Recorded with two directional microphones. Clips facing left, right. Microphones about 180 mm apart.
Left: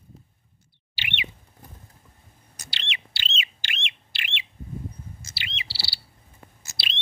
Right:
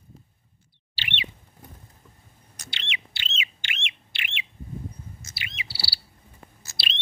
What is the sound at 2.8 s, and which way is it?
Bird, 35° left (ahead or behind).